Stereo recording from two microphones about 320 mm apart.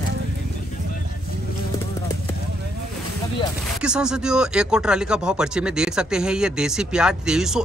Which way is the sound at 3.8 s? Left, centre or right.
Centre.